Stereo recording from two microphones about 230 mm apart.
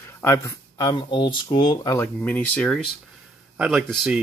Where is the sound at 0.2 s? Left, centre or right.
Centre.